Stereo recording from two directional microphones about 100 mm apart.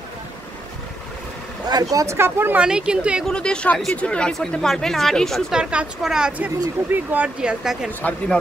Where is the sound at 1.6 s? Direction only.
40° right (ahead or behind); by 2.6 s 20° right (ahead or behind).